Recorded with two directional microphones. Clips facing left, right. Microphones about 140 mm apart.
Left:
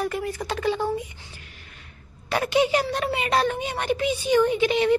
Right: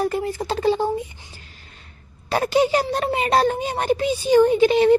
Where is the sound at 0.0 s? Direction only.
30° right (ahead or behind).